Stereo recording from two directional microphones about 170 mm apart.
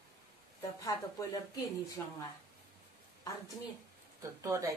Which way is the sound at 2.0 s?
15° left (ahead or behind).